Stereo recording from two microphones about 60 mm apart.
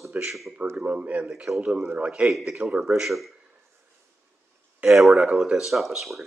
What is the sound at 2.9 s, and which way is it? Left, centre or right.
Speech, centre.